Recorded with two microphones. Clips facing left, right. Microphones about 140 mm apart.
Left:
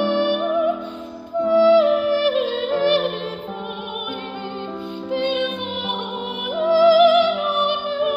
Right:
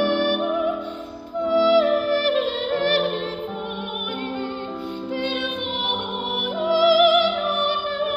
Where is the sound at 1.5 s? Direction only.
15° left (ahead or behind).